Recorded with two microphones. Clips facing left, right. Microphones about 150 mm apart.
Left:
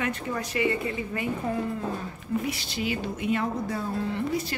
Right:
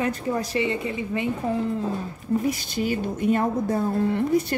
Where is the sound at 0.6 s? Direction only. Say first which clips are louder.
Right 1 dB; 20° right (ahead or behind).